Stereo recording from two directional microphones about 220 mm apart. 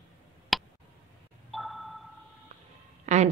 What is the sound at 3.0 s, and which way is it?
Speech, 30° right (ahead or behind).